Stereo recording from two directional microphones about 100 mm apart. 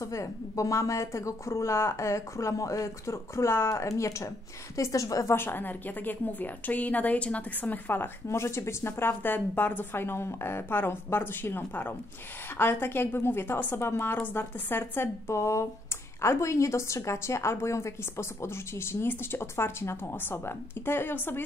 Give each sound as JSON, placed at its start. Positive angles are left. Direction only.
{"t": 0.0, "sound": "a woman's voice", "side_deg": 30}